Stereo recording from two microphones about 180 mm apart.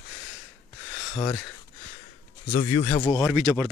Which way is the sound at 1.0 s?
25° left (ahead or behind).